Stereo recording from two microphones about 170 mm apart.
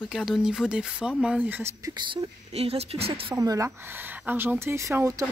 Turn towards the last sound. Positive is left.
turn(degrees=-20)  # may be behind; listen again after turning